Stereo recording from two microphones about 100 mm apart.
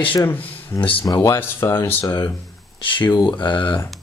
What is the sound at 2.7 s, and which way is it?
Speech, 50° left (ahead or behind).